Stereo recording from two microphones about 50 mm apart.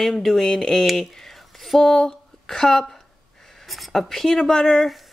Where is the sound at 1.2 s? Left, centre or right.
Centre.